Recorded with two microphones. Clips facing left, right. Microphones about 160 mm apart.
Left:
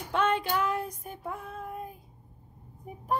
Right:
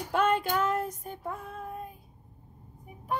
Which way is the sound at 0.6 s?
Centre (ahead or behind).